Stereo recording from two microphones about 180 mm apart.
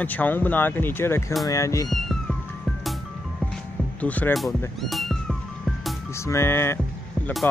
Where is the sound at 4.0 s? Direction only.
10° left (ahead or behind).